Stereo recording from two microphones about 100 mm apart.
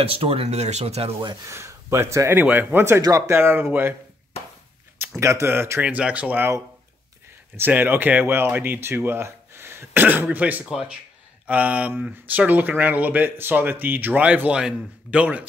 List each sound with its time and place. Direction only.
0.0 s speech: 70° right (ahead or behind); by 1.1 s 90° right
1.5 s speech: 30° right (ahead or behind)
3.0 s speech: 35° right (ahead or behind)
5.2 s speech: 30° right (ahead or behind)
7.5 s speech: 20° right (ahead or behind)
10.6 s speech: 5° right (ahead or behind)